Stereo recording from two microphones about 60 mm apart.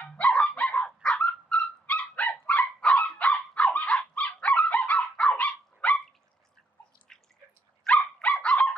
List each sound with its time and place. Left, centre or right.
0.4 s dog: left
7.1 s drip: centre
7.8 s dog: centre